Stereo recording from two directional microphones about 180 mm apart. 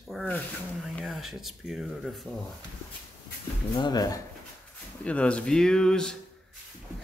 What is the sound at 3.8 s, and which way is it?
Speech, 25° left (ahead or behind).